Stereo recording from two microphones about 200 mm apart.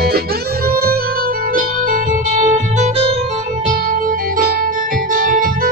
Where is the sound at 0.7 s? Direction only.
50° right (ahead or behind).